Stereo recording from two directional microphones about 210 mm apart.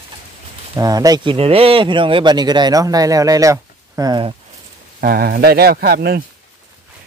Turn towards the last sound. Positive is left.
turn(degrees=-45)  # may be behind; listen again after turning